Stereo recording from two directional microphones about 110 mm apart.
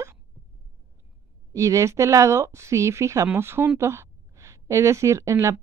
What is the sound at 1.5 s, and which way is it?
A woman's voice, 30° right (ahead or behind).